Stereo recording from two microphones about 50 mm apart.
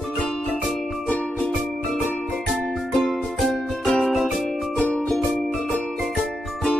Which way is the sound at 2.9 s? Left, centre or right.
Centre.